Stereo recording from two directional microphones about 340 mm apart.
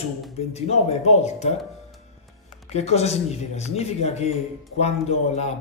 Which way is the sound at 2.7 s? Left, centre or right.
Centre.